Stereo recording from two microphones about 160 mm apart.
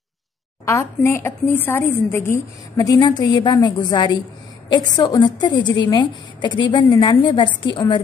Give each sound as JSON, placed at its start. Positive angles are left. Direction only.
{"t": 0.7, "sound": "speech", "side_deg": 15}